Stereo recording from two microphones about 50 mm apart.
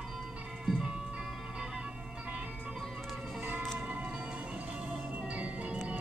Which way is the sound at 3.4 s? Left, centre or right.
Right.